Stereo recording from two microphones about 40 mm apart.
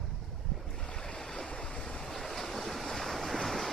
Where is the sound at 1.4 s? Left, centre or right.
Left.